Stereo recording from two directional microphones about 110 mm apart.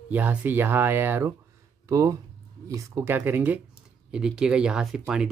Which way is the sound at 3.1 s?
15° right (ahead or behind).